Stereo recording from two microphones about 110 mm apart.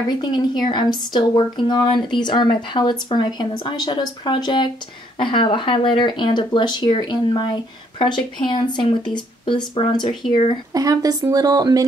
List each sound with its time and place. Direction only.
0.2 s speech: 45° left (ahead or behind)
10.7 s speech: 35° right (ahead or behind)